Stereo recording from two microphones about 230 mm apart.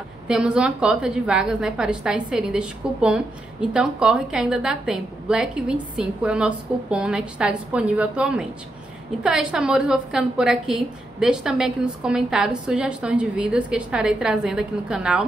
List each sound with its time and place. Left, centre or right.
0.3 s a woman's voice: centre